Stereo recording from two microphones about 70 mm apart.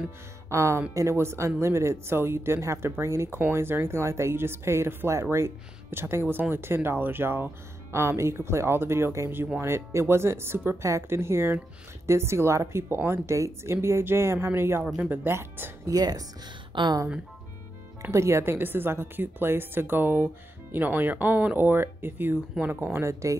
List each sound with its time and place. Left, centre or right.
0.5 s speech: right
10.8 s speech: right
15.9 s speech: right
18.1 s speech: right
22.9 s speech: right